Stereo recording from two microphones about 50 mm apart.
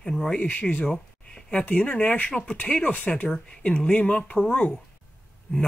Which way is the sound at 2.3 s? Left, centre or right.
Left.